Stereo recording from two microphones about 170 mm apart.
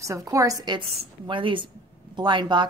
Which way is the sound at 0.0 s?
20° right (ahead or behind).